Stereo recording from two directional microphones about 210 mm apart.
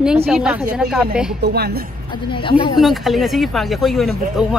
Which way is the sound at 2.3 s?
25° left (ahead or behind).